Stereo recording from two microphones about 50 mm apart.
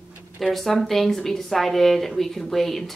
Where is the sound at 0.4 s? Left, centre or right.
Centre.